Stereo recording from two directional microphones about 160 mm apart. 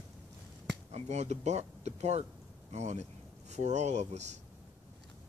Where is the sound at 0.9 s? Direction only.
45° right (ahead or behind).